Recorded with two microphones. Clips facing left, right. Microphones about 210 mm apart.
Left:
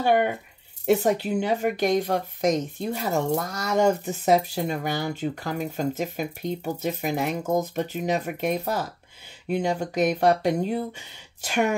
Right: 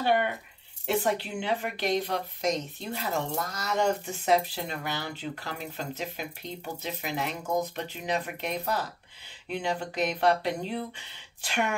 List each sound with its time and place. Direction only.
0.0 s speech: 50° left (ahead or behind)